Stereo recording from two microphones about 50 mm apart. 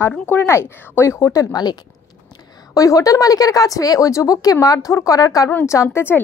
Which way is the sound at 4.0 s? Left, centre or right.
Left.